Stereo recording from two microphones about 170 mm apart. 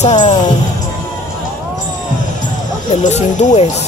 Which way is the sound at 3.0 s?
45° left (ahead or behind).